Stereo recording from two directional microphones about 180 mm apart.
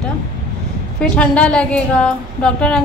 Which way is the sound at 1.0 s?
5° left (ahead or behind).